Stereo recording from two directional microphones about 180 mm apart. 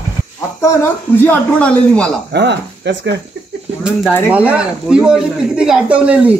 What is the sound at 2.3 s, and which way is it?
Speech, 70° right (ahead or behind).